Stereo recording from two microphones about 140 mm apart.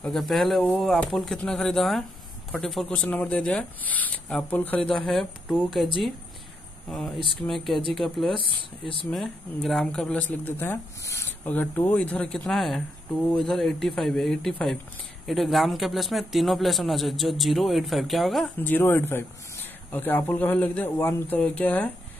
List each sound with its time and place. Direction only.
0.0 s a man's voice: centre (ahead or behind)
7.3 s a man's voice: centre (ahead or behind)
8.4 s speech: 40° left (ahead or behind)
9.1 s a man's voice: centre (ahead or behind)
18.6 s speech: 15° left (ahead or behind)